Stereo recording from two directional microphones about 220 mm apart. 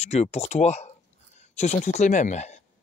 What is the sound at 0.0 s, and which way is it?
Speech, 30° left (ahead or behind).